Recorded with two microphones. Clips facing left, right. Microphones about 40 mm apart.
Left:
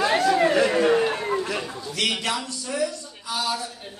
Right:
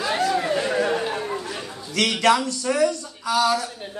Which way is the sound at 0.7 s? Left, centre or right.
Left.